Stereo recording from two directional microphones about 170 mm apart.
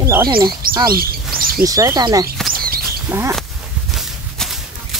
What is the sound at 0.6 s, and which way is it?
Bird, 60° right (ahead or behind).